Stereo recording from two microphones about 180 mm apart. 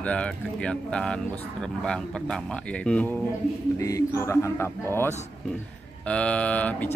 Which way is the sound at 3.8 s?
15° left (ahead or behind).